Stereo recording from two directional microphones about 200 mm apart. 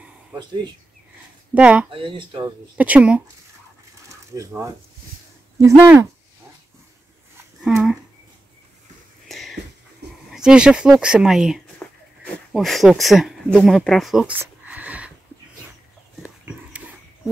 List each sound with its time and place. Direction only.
0.4 s speech: 20° right (ahead or behind)
1.5 s speech: 5° right (ahead or behind)
1.9 s speech: 25° right (ahead or behind)
2.8 s speech: 5° right (ahead or behind)
4.3 s speech: 15° right (ahead or behind)
5.8 s speech: 15° right (ahead or behind)
7.6 s speech: centre (ahead or behind)
9.3 s a sound: centre (ahead or behind)
10.3 s speech: 5° right (ahead or behind)
14.4 s a sound: 5° right (ahead or behind)